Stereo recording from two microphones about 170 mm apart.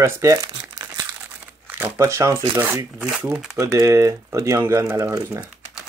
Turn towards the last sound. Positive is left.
turn(degrees=-15)  # may be behind; listen again after turning